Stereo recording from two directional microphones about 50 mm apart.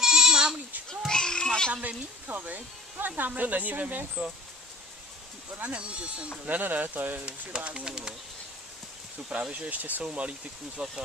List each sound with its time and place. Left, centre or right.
0.0 s goat: centre
0.8 s a child's voice: centre
1.7 s speech: right
5.5 s speech: right
5.8 s speech: right
6.4 s speech: right
7.2 s speech: centre
9.5 s speech: right